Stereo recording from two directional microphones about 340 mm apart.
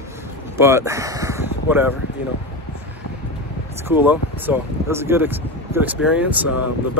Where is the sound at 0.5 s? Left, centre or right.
Centre.